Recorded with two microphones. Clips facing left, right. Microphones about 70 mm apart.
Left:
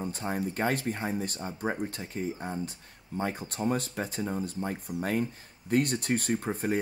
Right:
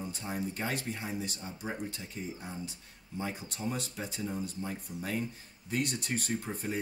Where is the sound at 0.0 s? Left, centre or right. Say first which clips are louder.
Left 5 dB; left.